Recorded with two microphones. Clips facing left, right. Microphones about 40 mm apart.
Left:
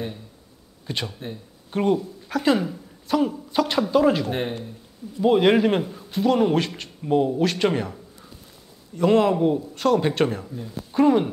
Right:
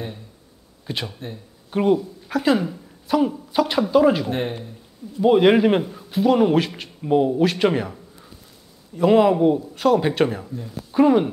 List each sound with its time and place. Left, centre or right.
0.8 s speech: centre